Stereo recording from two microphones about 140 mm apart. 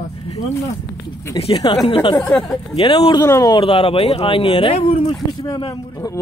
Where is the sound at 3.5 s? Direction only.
40° left (ahead or behind).